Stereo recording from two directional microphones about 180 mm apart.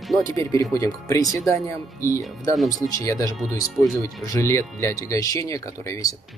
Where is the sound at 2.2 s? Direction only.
Centre (ahead or behind).